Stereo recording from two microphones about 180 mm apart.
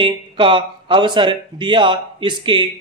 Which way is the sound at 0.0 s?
30° right (ahead or behind).